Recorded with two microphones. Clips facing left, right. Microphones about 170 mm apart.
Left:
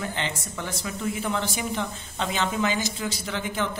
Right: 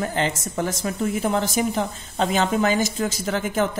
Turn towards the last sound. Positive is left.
turn(degrees=-45)  # may be behind; listen again after turning